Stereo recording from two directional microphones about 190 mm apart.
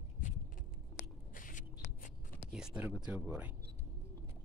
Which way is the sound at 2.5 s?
5° right (ahead or behind).